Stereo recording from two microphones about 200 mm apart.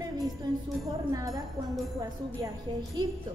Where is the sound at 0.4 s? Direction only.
20° right (ahead or behind).